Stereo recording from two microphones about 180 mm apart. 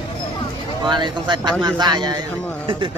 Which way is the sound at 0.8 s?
25° right (ahead or behind).